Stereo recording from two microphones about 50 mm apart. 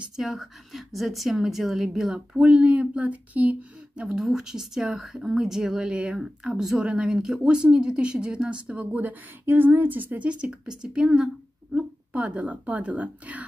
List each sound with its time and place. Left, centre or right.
0.1 s a woman's voice: centre
2.1 s speech: centre
4.1 s speech: centre
6.8 s speech: right
10.2 s speech: right